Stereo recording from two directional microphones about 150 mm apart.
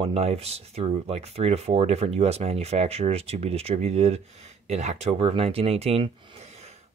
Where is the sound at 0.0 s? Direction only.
45° right (ahead or behind).